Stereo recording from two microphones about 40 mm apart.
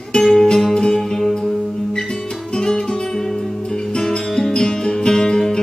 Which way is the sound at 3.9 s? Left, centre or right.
Centre.